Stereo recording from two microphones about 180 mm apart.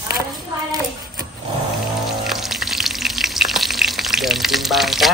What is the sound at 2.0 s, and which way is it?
Frying, centre (ahead or behind).